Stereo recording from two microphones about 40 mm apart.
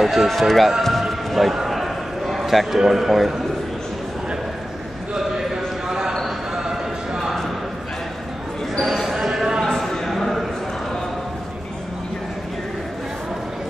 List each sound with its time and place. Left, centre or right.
0.0 s speech: centre
0.8 s basketball bounce: centre
2.2 s a man's voice: centre
5.9 s a sound: centre
8.8 s basketball bounce: centre
9.8 s a sound: centre